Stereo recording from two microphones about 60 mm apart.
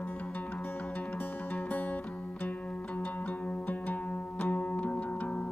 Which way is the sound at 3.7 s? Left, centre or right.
Left.